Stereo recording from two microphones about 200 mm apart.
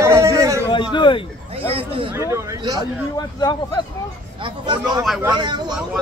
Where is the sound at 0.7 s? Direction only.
25° left (ahead or behind).